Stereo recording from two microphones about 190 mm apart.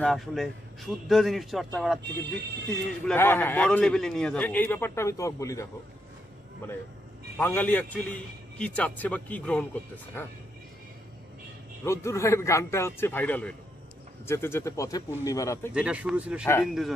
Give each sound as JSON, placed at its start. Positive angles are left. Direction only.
{"t": 0.0, "sound": "a man's voice", "side_deg": 0}
{"t": 2.0, "sound": "speech", "side_deg": -60}
{"t": 3.1, "sound": "a man's voice", "side_deg": 10}
{"t": 7.3, "sound": "a man's voice", "side_deg": 10}
{"t": 11.8, "sound": "a man's voice", "side_deg": 15}
{"t": 15.7, "sound": "a man's voice", "side_deg": -5}